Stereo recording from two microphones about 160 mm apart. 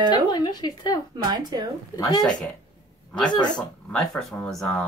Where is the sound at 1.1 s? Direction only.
25° right (ahead or behind).